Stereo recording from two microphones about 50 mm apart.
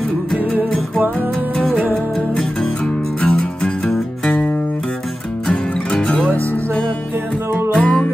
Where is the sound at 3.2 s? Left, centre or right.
Left.